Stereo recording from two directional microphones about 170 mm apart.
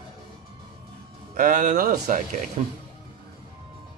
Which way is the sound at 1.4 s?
50° right (ahead or behind).